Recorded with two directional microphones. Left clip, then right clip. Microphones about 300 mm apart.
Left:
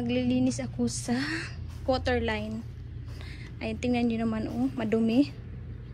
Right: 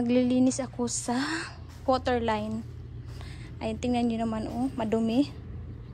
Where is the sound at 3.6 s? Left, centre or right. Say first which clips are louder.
Even; centre.